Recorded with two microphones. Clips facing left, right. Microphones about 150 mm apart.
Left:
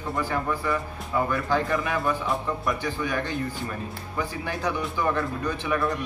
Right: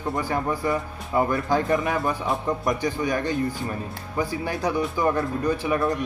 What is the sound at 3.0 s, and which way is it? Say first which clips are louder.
Speech: right 4 dB; 40° right (ahead or behind).